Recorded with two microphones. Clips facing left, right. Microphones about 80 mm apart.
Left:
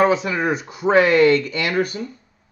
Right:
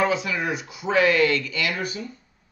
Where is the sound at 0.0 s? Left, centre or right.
Left.